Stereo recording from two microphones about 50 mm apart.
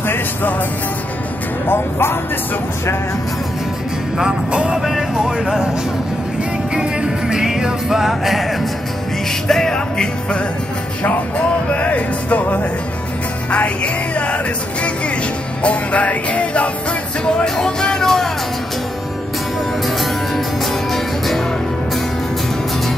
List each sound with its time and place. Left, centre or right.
0.1 s music: left
1.7 s speech: left
4.2 s music: centre
4.8 s music: centre
5.4 s speech: centre
6.7 s music: centre
9.5 s music: centre
11.1 s music: left
14.1 s music: left
17.2 s music: centre